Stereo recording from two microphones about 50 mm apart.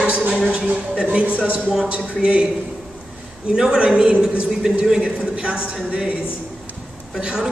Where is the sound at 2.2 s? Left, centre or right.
Right.